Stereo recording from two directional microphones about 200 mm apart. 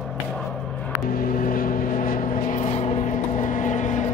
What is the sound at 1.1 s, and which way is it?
Vehicle, 45° left (ahead or behind).